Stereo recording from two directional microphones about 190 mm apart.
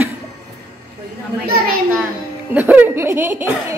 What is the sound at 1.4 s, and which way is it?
Speech, 50° right (ahead or behind).